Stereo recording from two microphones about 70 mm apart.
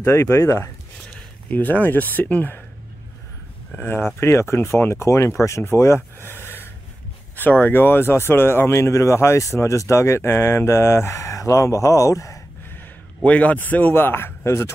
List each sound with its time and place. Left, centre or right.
0.0 s speech: left
1.5 s a man's voice: left
3.8 s speech: left
13.2 s a man's voice: centre; by 14.7 s left